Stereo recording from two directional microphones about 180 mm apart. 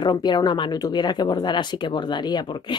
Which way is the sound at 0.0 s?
25° left (ahead or behind).